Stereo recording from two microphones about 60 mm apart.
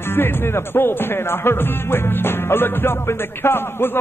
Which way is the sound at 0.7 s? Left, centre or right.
Left.